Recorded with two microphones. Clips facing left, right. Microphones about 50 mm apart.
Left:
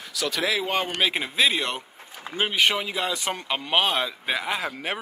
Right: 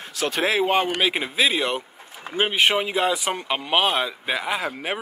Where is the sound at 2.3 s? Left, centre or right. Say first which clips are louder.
Right 3 dB; centre.